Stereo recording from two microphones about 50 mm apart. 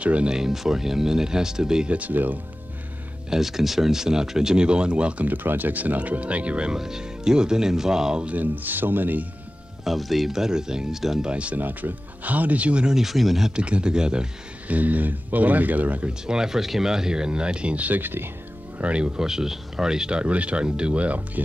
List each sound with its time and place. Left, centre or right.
0.0 s speech: right
0.3 s speech: centre
1.9 s speech: right
3.3 s speech: centre; by 5.3 s right
5.3 s speech: right; by 8.3 s centre
8.3 s speech: right
9.8 s speech: centre
11.2 s speech: right
12.8 s speech: centre
13.6 s speech: right
14.7 s speech: right
16.1 s speech: centre; by 18.3 s right
18.8 s speech: right
19.1 s speech: centre; by 21.2 s right